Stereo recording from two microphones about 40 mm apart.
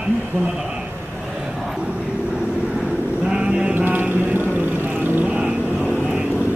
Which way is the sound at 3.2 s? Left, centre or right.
Right.